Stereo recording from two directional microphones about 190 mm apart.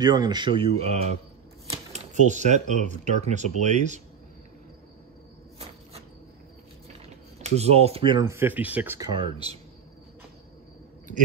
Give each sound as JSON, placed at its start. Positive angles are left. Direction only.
{"t": 0.0, "sound": "speech", "side_deg": -20}
{"t": 7.5, "sound": "speech", "side_deg": -35}
{"t": 8.3, "sound": "speech", "side_deg": -10}
{"t": 9.1, "sound": "speech", "side_deg": -30}